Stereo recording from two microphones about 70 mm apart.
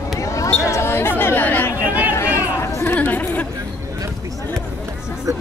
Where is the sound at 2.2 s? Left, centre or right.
Left.